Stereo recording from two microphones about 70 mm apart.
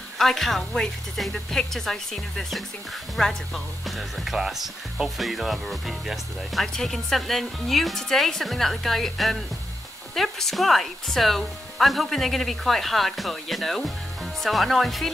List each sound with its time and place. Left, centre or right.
0.2 s speech: centre